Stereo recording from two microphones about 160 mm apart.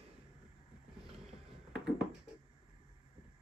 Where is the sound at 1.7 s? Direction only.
5° right (ahead or behind).